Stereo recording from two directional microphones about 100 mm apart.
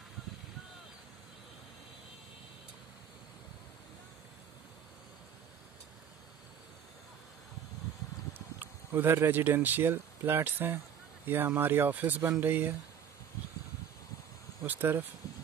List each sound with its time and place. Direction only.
8.3 s speech: 20° right (ahead or behind)
14.7 s speech: 15° right (ahead or behind)